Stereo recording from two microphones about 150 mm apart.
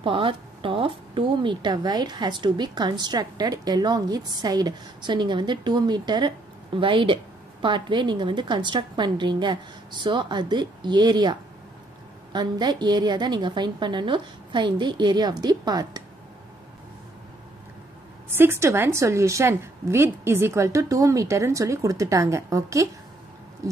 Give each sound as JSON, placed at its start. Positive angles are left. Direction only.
{"t": 0.0, "sound": "a woman's voice", "side_deg": -35}
{"t": 18.3, "sound": "a woman's voice", "side_deg": -15}